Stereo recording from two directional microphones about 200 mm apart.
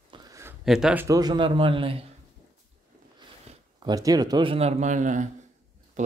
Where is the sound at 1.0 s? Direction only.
20° right (ahead or behind).